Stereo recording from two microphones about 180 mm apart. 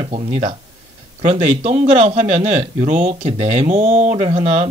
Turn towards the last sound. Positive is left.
turn(degrees=-35)  # may be behind; listen again after turning